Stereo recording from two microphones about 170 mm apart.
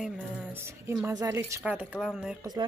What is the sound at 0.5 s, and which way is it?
A woman's voice, 15° right (ahead or behind).